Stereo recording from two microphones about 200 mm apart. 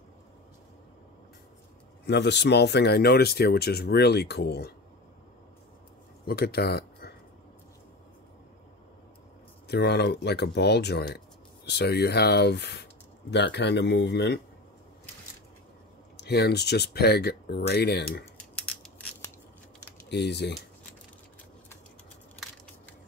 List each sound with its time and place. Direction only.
2.0 s speech: 55° left (ahead or behind)
6.2 s speech: 50° left (ahead or behind)
9.7 s speech: 55° left (ahead or behind)
16.2 s speech: 55° left (ahead or behind)
18.4 s scissors: 5° left (ahead or behind)
20.1 s speech: 55° left (ahead or behind)